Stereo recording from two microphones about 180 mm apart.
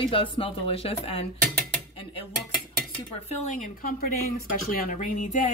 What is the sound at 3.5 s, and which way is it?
Speech, 50° left (ahead or behind).